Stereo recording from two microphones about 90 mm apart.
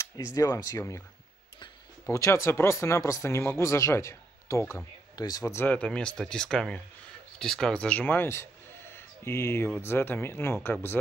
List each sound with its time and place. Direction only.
0.0 s a sound: 40° left (ahead or behind)
0.6 s speech: 40° left (ahead or behind)
2.0 s speech: 35° left (ahead or behind)
5.1 s speech: 45° left (ahead or behind)
5.7 s speech: 10° left (ahead or behind)